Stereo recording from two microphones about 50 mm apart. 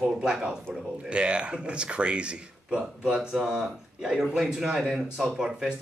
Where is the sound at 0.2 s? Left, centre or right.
Centre.